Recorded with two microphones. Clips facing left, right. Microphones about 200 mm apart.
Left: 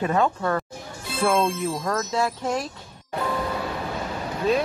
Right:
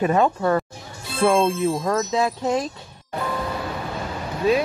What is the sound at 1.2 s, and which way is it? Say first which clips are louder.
Speech: right 4 dB; 25° right (ahead or behind).